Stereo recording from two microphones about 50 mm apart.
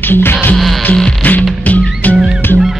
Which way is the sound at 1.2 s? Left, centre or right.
Left.